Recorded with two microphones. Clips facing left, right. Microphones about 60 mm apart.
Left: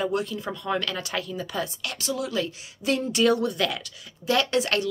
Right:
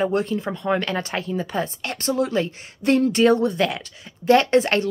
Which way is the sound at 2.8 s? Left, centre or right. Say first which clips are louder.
Right 6 dB; right.